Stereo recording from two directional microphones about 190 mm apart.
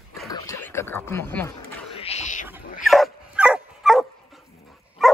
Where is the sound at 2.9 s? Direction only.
5° right (ahead or behind).